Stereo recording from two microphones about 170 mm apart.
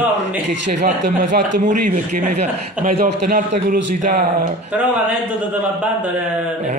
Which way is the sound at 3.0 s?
50° right (ahead or behind).